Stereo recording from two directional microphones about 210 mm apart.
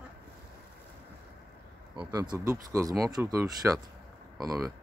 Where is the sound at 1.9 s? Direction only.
20° right (ahead or behind).